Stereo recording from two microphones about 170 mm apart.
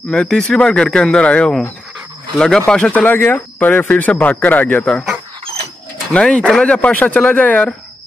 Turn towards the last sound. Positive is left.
turn(degrees=10)  # may be behind; listen again after turning